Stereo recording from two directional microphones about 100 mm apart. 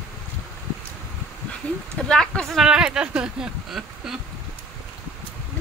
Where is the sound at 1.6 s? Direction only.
15° left (ahead or behind); by 4.2 s 5° right (ahead or behind).